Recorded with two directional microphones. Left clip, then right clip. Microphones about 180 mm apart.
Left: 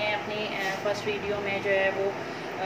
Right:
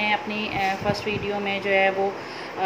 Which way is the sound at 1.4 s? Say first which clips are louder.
Right 5 dB; 50° right (ahead or behind).